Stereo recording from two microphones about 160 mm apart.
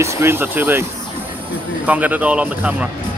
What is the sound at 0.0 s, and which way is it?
Speech, 15° right (ahead or behind).